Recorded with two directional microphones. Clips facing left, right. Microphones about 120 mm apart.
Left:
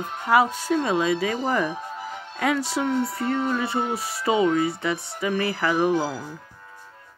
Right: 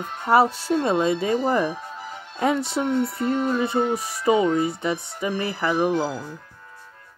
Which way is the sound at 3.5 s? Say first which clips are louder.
Right 2 dB; 20° right (ahead or behind).